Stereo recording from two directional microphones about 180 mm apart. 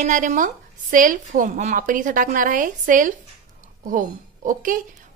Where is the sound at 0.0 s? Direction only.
45° right (ahead or behind).